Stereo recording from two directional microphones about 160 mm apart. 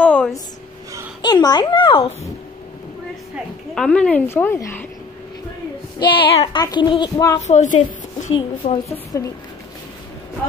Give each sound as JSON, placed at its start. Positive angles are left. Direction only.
{"t": 0.0, "sound": "a sound", "side_deg": 10}
{"t": 1.2, "sound": "child singing", "side_deg": 25}
{"t": 3.7, "sound": "speech", "side_deg": 5}
{"t": 6.0, "sound": "child singing", "side_deg": 30}
{"t": 7.4, "sound": "a woman's voice", "side_deg": 50}
{"t": 8.6, "sound": "a woman's voice", "side_deg": 35}
{"t": 9.1, "sound": "child singing", "side_deg": 20}